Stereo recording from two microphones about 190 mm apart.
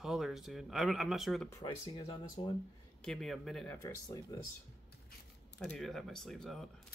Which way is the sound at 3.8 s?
20° left (ahead or behind).